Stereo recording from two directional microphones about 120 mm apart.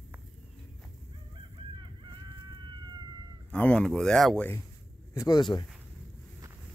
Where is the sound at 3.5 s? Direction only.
10° left (ahead or behind).